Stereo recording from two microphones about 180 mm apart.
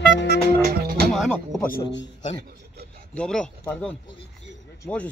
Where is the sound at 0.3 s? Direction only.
55° right (ahead or behind).